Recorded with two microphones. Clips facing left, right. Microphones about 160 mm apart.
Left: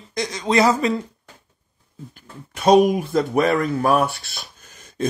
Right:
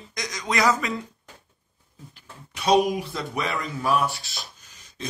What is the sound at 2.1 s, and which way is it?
Speech, 50° left (ahead or behind).